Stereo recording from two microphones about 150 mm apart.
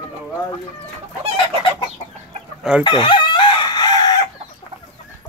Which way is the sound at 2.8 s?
35° left (ahead or behind).